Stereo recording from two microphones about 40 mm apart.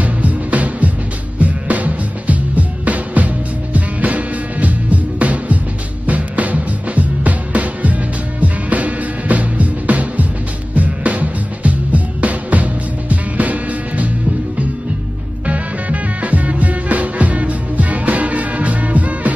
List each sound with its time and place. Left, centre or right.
0.0 s music: right
15.4 s music: right